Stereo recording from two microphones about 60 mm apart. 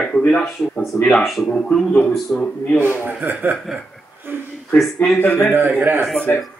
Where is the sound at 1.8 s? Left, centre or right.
Centre.